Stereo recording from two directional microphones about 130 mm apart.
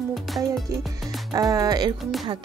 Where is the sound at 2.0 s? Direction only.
Centre (ahead or behind).